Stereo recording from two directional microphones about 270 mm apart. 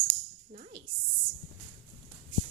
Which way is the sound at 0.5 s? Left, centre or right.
Right.